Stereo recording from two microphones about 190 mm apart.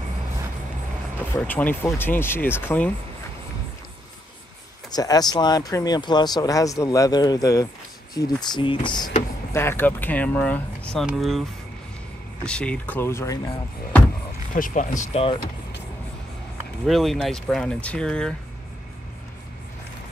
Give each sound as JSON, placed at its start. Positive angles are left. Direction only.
{"t": 1.3, "sound": "speech", "side_deg": 10}
{"t": 4.9, "sound": "speech", "side_deg": 20}
{"t": 9.5, "sound": "speech", "side_deg": 15}
{"t": 12.4, "sound": "speech", "side_deg": 5}
{"t": 14.5, "sound": "speech", "side_deg": 45}
{"t": 16.8, "sound": "speech", "side_deg": 0}